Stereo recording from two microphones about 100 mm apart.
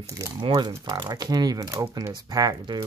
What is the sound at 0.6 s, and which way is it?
Speech, 45° right (ahead or behind).